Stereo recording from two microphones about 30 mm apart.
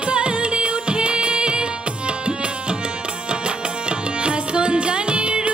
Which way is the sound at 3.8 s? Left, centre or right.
Right.